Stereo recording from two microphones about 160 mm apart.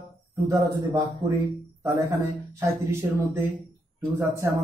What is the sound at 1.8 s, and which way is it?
Speech, 20° right (ahead or behind).